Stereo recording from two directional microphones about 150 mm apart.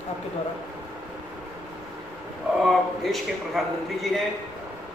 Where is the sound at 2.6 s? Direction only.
Centre (ahead or behind).